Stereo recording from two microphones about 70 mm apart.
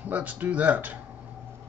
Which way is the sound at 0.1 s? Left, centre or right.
Right.